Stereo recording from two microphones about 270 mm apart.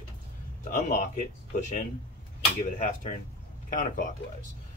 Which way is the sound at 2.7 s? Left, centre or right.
Left.